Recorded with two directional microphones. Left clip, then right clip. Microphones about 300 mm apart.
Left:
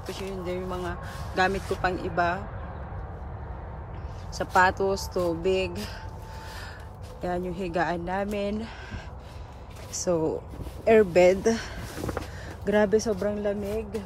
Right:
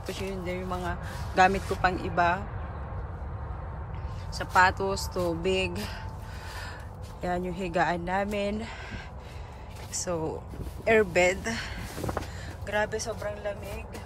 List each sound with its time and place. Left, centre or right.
0.0 s speech: centre
4.3 s speech: centre
7.2 s speech: centre; by 13.6 s left